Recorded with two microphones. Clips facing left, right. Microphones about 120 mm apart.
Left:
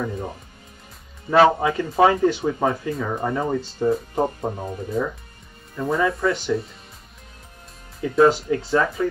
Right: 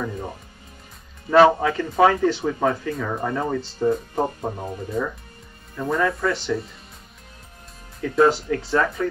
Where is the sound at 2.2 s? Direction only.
15° left (ahead or behind).